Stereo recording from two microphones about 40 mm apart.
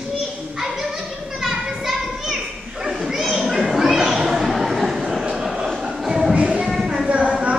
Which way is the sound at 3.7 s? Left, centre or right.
Centre.